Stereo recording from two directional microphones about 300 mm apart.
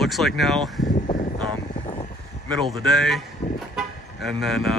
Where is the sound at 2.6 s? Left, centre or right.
Centre.